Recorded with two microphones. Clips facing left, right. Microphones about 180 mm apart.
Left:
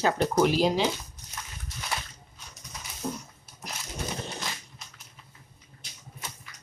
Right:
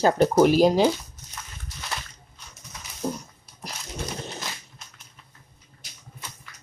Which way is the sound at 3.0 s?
35° right (ahead or behind).